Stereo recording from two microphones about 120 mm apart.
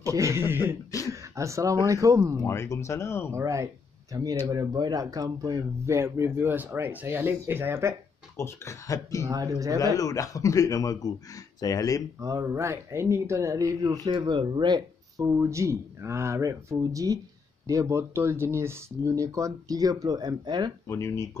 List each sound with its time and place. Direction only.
0.0 s speech: 25° right (ahead or behind)
2.3 s speech: 20° left (ahead or behind)
3.3 s speech: 25° right (ahead or behind)
8.4 s speech: 25° left (ahead or behind)
9.2 s speech: 30° right (ahead or behind)
9.9 s speech: 30° left (ahead or behind)
12.2 s speech: 25° right (ahead or behind)
15.2 s speech: 25° right (ahead or behind)
20.8 s speech: 25° left (ahead or behind)